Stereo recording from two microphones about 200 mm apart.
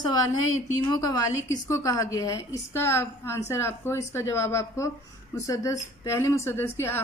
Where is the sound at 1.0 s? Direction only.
15° left (ahead or behind).